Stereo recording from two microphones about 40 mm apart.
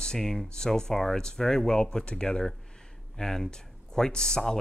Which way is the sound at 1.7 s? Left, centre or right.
Left.